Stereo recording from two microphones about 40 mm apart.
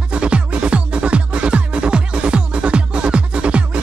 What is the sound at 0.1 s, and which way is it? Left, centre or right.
Music, right.